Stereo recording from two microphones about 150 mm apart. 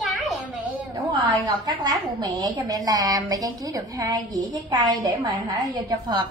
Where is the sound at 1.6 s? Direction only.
30° right (ahead or behind).